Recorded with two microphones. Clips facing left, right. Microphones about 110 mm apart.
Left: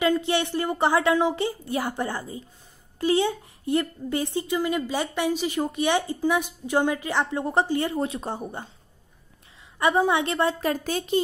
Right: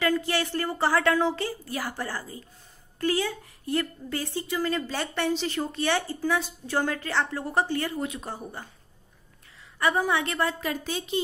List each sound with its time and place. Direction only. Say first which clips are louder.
0.0 s a woman's voice: left 3 dB; 20° left (ahead or behind)
9.8 s a woman's voice: left 3 dB; 20° left (ahead or behind)
10.6 s a woman's voice: left 5 dB; 45° left (ahead or behind)